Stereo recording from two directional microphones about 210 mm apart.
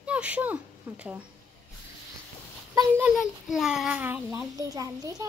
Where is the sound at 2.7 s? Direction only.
15° right (ahead or behind).